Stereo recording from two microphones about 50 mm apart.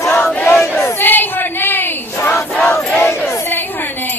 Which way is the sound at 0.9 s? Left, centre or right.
Left.